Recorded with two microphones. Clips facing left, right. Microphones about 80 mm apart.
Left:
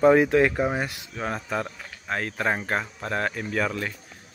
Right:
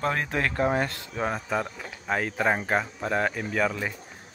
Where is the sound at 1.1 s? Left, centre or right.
Centre.